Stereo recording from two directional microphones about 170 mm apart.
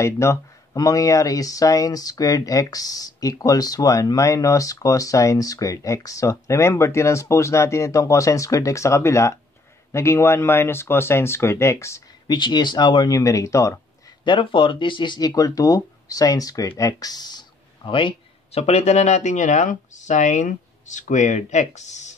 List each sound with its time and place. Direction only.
0.0 s speech: 15° left (ahead or behind)
14.2 s speech: 30° left (ahead or behind)